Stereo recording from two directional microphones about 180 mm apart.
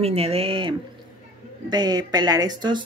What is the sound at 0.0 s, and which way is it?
Speech, 35° right (ahead or behind).